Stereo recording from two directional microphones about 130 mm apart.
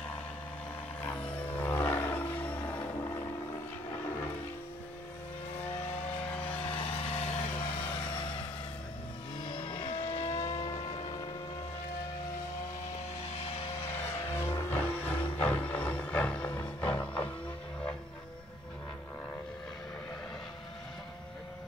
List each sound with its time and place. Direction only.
1.6 s a sound: 15° left (ahead or behind)
6.6 s vehicle: 45° left (ahead or behind)
9.4 s vehicle: 40° left (ahead or behind)
13.4 s music: 50° left (ahead or behind)
13.8 s vehicle: 15° left (ahead or behind)
15.4 s music: 10° left (ahead or behind)